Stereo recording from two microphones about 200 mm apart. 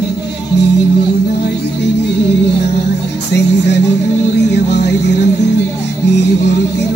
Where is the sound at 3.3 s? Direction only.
60° left (ahead or behind).